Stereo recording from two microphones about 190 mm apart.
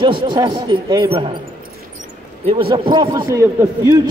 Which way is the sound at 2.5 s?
30° right (ahead or behind).